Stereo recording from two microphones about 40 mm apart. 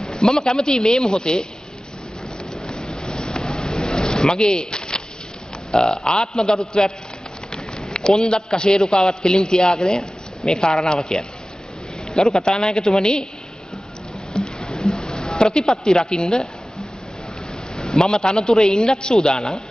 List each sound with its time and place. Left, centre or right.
0.0 s a man's voice: centre
2.6 s a sound: centre
5.7 s burping: centre
6.1 s a man's voice: centre
14.3 s a sound: centre
15.9 s a man's voice: centre
17.7 s a man's voice: centre